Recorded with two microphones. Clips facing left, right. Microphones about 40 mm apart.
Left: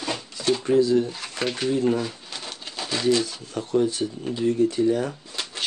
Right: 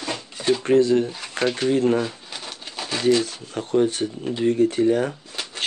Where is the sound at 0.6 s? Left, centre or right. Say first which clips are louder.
Right 2 dB; right.